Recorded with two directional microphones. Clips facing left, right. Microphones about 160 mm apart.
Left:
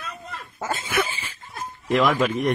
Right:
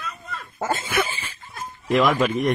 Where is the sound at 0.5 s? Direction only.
50° right (ahead or behind).